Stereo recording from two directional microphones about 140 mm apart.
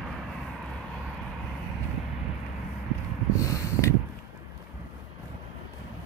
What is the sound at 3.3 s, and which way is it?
Snort, 25° left (ahead or behind).